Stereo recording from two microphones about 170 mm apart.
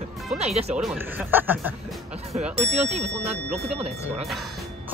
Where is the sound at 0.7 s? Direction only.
10° right (ahead or behind).